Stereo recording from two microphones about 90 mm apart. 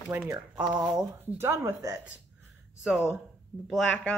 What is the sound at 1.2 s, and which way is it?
Speech, 25° right (ahead or behind).